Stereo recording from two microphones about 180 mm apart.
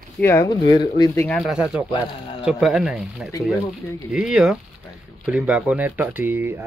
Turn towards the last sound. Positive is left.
turn(degrees=-10)  # may be behind; listen again after turning